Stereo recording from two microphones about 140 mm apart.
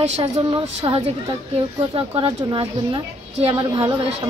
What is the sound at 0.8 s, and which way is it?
Speech, 30° right (ahead or behind).